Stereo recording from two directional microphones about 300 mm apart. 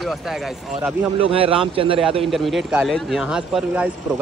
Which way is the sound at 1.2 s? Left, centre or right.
Centre.